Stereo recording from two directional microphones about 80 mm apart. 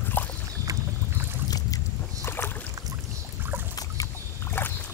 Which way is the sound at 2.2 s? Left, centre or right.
Left.